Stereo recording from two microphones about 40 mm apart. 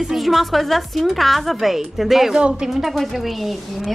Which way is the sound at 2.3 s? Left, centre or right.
Right.